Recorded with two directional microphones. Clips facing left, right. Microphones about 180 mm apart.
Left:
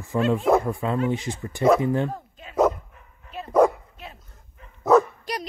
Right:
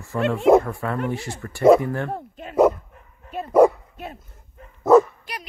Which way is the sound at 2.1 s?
55° right (ahead or behind).